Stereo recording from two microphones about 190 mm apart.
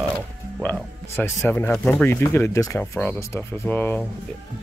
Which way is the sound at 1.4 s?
5° left (ahead or behind).